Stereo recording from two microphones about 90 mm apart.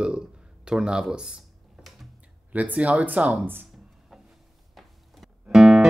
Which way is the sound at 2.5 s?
15° right (ahead or behind).